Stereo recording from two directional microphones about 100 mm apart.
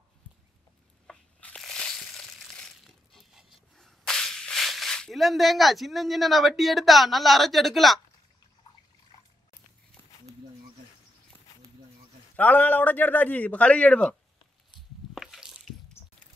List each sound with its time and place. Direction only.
1.0 s crushing: 10° left (ahead or behind)
3.7 s speech: 5° left (ahead or behind)
12.4 s a man's voice: 15° left (ahead or behind)
15.1 s a sound: 5° right (ahead or behind)